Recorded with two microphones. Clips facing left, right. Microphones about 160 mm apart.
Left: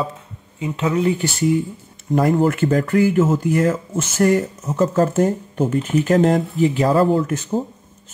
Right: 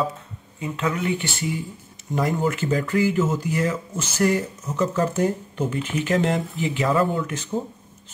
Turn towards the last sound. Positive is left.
turn(degrees=40)  # may be behind; listen again after turning